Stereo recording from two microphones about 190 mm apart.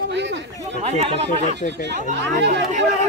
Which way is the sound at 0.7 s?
30° right (ahead or behind).